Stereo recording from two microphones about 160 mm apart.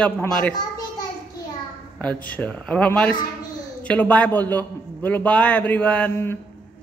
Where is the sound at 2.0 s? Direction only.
10° left (ahead or behind).